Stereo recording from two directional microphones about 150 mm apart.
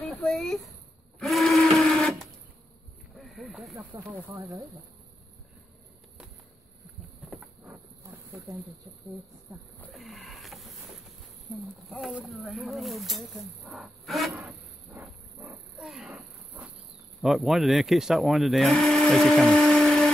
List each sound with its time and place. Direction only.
0.1 s a sound: centre (ahead or behind)
3.2 s snake: centre (ahead or behind)
3.9 s speech: 25° right (ahead or behind)
7.2 s a sound: 5° right (ahead or behind)
8.0 s snake: 10° right (ahead or behind)
9.9 s wild animals: centre (ahead or behind)
11.5 s speech: 10° right (ahead or behind)
14.3 s wild animals: 10° right (ahead or behind)
17.2 s speech: centre (ahead or behind)